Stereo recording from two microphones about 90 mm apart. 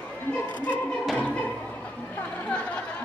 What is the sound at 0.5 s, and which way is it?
Music, 15° left (ahead or behind).